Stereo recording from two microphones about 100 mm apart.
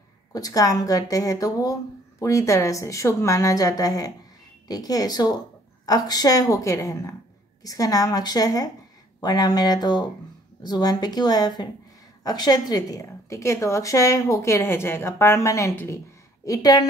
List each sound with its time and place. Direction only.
0.3 s a woman's voice: 35° left (ahead or behind)